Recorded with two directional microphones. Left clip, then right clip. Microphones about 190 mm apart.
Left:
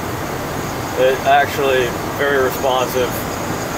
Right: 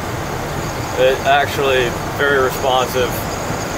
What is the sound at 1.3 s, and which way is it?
Speech, 20° right (ahead or behind).